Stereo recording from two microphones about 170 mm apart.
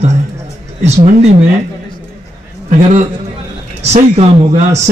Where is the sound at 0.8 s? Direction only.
40° right (ahead or behind).